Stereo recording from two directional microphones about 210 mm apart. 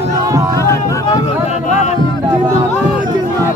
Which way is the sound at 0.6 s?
15° left (ahead or behind).